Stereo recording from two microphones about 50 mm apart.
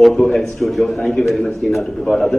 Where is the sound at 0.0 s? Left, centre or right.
Centre.